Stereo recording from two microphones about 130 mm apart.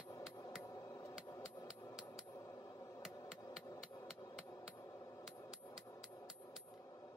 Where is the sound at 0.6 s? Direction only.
30° left (ahead or behind).